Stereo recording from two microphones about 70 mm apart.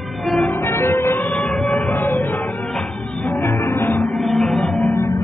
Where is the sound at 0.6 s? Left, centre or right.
Left.